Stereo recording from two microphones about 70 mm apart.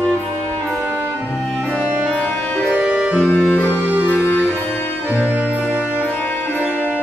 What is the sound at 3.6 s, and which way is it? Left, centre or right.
Music, right.